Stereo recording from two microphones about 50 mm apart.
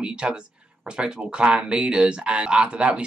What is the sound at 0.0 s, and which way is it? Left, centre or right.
Speech, centre.